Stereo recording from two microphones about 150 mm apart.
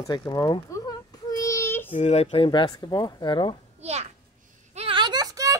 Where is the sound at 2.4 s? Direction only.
30° left (ahead or behind).